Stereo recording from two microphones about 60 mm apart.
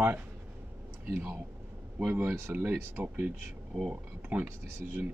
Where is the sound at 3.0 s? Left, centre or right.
Right.